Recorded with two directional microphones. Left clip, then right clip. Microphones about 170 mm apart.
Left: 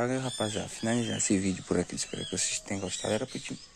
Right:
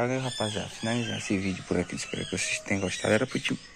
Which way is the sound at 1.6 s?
40° left (ahead or behind).